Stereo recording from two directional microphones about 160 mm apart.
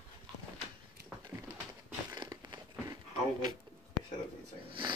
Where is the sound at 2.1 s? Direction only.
25° right (ahead or behind).